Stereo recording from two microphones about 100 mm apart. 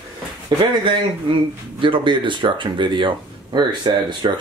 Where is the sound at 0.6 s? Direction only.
50° right (ahead or behind).